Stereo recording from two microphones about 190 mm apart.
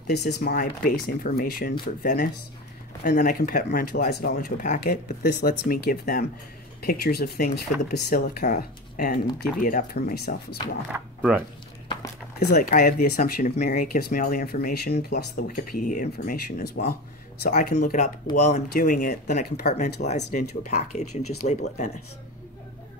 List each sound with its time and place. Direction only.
0.0 s speech: 60° left (ahead or behind)
10.9 s speech: 10° right (ahead or behind)
12.5 s speech: 45° left (ahead or behind)